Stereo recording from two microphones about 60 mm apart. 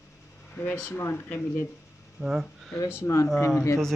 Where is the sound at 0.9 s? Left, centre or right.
Left.